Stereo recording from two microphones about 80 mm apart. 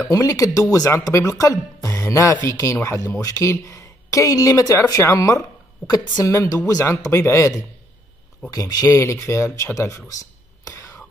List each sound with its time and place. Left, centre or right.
0.1 s speech: left
1.9 s music: left
2.4 s speech: left
8.5 s speech: left
8.9 s speech: left